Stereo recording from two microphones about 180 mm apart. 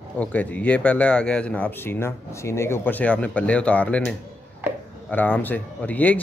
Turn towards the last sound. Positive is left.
turn(degrees=10)  # may be behind; listen again after turning